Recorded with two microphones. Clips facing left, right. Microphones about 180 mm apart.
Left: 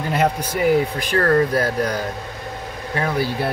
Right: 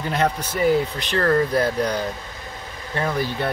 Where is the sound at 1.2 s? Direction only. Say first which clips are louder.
Left 1 dB; 15° right (ahead or behind).